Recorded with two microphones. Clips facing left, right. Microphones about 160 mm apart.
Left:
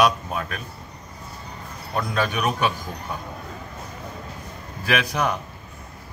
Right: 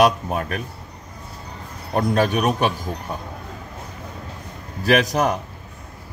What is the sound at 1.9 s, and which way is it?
Speech, 45° right (ahead or behind).